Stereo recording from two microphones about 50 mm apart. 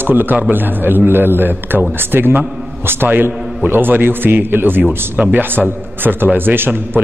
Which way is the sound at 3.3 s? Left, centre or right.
Centre.